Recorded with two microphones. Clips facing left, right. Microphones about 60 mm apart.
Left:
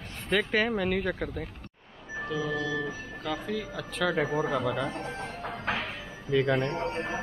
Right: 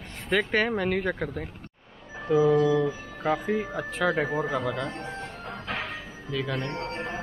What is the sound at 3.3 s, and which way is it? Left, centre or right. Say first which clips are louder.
Speech: right 5 dB; right.